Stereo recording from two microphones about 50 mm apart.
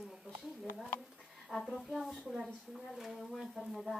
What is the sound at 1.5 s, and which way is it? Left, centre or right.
A woman's voice, centre.